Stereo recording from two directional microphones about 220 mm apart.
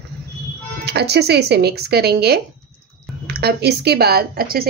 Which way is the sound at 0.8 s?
50° right (ahead or behind).